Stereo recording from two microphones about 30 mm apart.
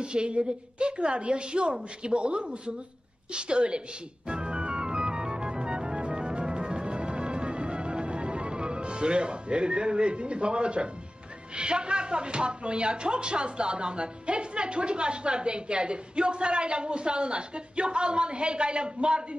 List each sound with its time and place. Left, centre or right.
0.0 s speech: right
4.3 s music: right
11.5 s speech: right